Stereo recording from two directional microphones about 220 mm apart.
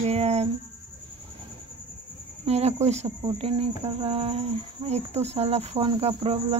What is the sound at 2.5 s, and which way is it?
Speech, 30° right (ahead or behind).